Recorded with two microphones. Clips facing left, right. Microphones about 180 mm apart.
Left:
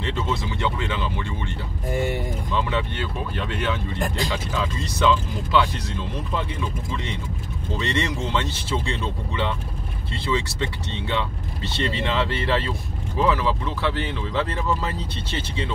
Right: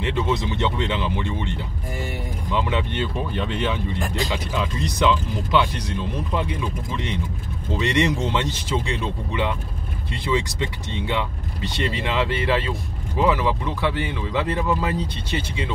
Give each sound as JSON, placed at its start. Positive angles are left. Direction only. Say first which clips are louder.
{"t": 0.0, "sound": "speech", "louder": "right 3 dB", "side_deg": -15}
{"t": 2.5, "sound": "speech", "louder": "right 2 dB", "side_deg": -20}
{"t": 7.7, "sound": "speech", "louder": "right 4 dB", "side_deg": -15}